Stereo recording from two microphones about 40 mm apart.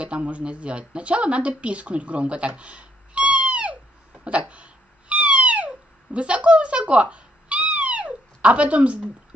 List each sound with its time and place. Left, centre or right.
0.0 s speech: right
4.2 s cat: right